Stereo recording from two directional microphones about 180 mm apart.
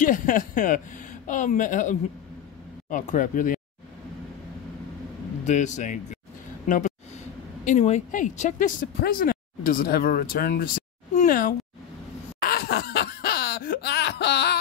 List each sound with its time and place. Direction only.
0.0 s speech: 45° left (ahead or behind)
5.4 s a man's voice: 40° left (ahead or behind)
7.6 s speech: 40° left (ahead or behind)
12.4 s laughter: 60° left (ahead or behind)